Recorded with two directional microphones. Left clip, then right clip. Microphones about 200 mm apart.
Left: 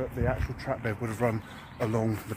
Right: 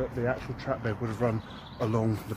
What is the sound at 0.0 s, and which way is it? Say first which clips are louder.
Speech: right 1 dB; 20° left (ahead or behind).